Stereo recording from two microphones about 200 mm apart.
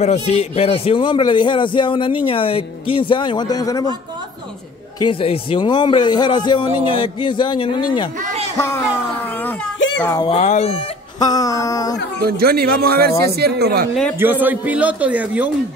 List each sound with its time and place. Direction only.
0.0 s a man's voice: 35° left (ahead or behind)
5.0 s a man's voice: 25° left (ahead or behind)
10.0 s a man's voice: 20° left (ahead or behind)
10.3 s speech: 35° left (ahead or behind)
11.1 s a sound: 20° left (ahead or behind)
12.3 s a man's voice: 50° right (ahead or behind)
14.1 s speech: 10° right (ahead or behind)